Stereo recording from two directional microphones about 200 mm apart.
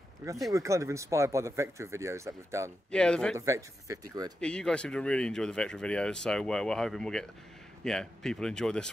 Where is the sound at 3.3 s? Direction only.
15° right (ahead or behind).